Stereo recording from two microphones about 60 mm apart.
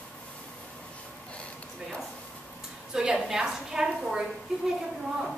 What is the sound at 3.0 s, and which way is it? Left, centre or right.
A woman's voice, centre.